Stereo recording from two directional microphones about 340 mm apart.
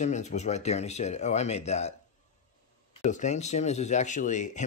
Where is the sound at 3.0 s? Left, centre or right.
Left.